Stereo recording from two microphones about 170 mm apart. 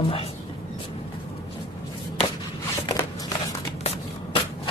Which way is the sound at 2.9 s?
20° left (ahead or behind).